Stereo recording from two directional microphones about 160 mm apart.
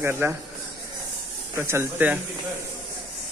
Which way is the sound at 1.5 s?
15° right (ahead or behind).